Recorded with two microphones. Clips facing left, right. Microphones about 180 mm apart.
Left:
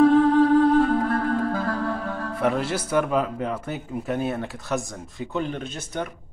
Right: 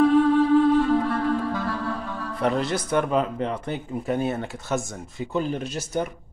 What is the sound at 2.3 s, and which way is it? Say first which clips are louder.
Speech: right 1 dB; 5° left (ahead or behind).